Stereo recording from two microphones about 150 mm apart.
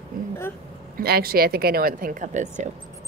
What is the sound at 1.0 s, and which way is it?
Speech, 90° right.